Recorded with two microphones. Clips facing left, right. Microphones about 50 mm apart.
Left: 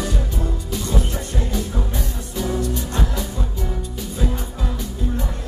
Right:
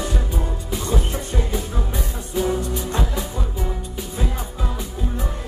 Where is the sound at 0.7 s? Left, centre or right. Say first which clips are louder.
Right 1 dB; centre.